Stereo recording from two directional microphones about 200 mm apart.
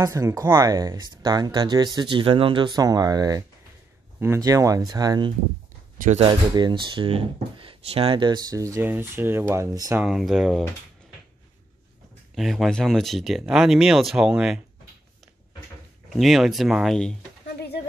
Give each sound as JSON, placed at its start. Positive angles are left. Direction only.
{"t": 0.0, "sound": "speech", "side_deg": -15}
{"t": 5.9, "sound": "speech", "side_deg": -35}
{"t": 6.2, "sound": "speech", "side_deg": -20}
{"t": 10.0, "sound": "speech", "side_deg": -5}
{"t": 12.4, "sound": "speech", "side_deg": 0}
{"t": 16.1, "sound": "speech", "side_deg": 0}